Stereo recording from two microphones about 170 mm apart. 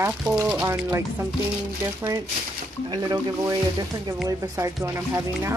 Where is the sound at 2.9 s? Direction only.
25° right (ahead or behind).